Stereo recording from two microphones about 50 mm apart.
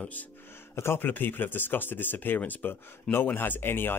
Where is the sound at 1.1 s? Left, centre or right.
Left.